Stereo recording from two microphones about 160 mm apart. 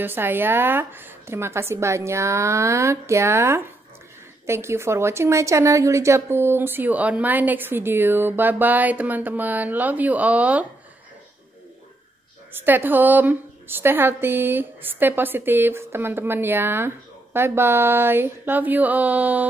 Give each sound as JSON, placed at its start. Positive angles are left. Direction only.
{"t": 0.0, "sound": "a woman's voice", "side_deg": -15}
{"t": 12.6, "sound": "a woman's voice", "side_deg": -10}